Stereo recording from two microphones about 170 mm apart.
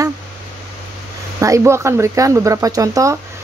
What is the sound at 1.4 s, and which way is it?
Speech, 15° right (ahead or behind).